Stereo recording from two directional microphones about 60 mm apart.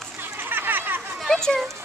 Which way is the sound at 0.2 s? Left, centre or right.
Right.